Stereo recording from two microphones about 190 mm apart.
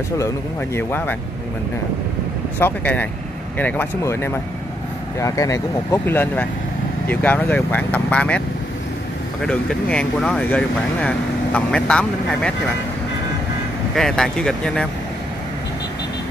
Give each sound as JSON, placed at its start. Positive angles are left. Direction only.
{"t": 0.7, "sound": "speech", "side_deg": 10}
{"t": 2.6, "sound": "speech", "side_deg": 10}
{"t": 9.4, "sound": "speech", "side_deg": 5}
{"t": 13.9, "sound": "speech", "side_deg": 5}